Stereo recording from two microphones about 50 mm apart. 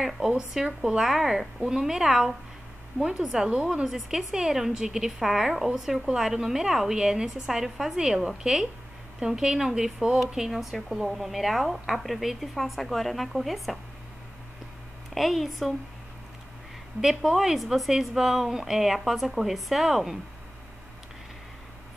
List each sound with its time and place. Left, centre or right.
0.0 s a woman's voice: centre
3.4 s a woman's voice: centre
3.8 s a woman's voice: centre
15.1 s speech: centre
17.0 s speech: centre